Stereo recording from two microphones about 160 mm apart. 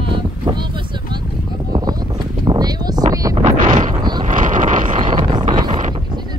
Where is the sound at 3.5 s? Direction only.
55° right (ahead or behind).